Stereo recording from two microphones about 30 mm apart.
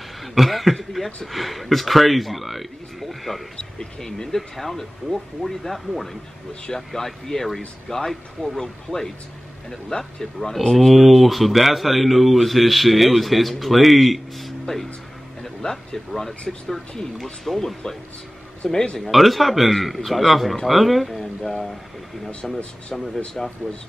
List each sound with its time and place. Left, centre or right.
0.2 s speech: centre
4.0 s speech: centre
4.4 s speech: centre
15.4 s a sound: centre
16.1 s speech: centre
18.6 s speech: left
18.9 s speech: centre
22.4 s speech: centre